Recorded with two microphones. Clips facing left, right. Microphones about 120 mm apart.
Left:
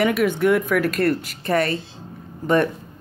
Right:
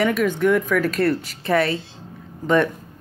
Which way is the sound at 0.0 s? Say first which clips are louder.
Even; 10° left (ahead or behind).